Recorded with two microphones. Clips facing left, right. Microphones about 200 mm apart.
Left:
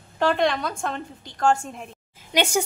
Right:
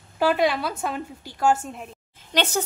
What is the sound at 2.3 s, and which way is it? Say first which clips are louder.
Speech: left 2 dB; 10° left (ahead or behind).